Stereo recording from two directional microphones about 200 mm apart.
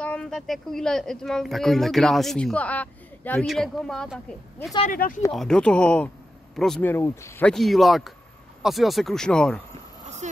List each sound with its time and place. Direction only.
0.0 s speech: 5° left (ahead or behind)
4.8 s speech: 40° left (ahead or behind)
5.3 s speech: centre (ahead or behind)
10.0 s a sound: 35° right (ahead or behind)